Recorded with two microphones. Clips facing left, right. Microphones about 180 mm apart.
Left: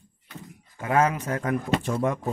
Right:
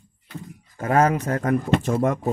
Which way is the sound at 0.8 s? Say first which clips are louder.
Right 4 dB; 40° right (ahead or behind).